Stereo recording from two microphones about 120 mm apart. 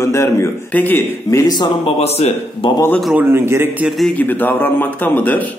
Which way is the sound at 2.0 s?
60° left (ahead or behind).